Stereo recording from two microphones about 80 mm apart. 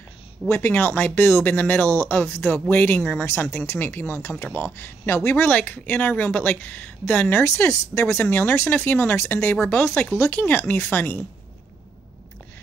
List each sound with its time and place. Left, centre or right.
0.5 s speech: left